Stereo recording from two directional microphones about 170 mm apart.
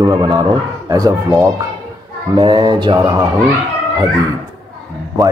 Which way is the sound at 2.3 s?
25° right (ahead or behind).